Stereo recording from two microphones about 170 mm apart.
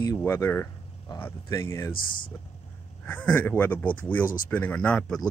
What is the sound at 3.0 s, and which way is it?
Speech, 10° left (ahead or behind).